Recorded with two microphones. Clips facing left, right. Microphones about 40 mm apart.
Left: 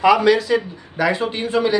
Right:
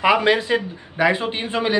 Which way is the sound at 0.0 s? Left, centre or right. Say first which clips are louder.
Left 3 dB; right.